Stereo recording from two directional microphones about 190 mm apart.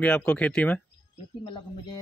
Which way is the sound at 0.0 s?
5° left (ahead or behind).